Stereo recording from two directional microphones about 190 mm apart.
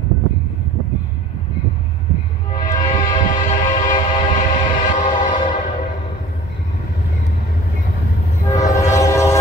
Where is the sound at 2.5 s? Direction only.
40° left (ahead or behind).